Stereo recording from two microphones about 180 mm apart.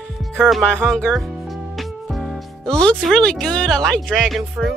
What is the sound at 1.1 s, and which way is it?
Music, centre (ahead or behind).